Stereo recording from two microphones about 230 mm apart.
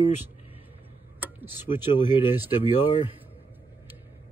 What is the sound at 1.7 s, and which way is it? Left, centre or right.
Speech, left.